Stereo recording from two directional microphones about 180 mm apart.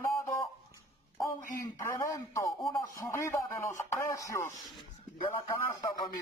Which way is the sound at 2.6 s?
30° left (ahead or behind).